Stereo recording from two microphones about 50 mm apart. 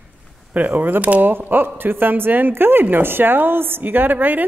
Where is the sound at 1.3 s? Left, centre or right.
Right.